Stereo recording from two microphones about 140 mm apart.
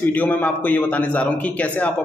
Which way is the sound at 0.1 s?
10° left (ahead or behind).